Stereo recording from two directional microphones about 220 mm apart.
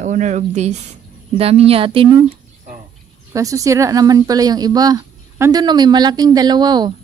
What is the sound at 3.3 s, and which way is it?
Speech, 15° right (ahead or behind).